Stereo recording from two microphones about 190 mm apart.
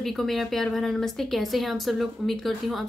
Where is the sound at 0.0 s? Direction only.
Centre (ahead or behind).